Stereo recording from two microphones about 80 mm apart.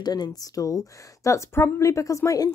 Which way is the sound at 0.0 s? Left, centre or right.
Left.